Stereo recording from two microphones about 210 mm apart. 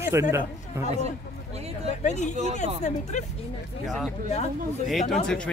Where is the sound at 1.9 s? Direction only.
35° left (ahead or behind).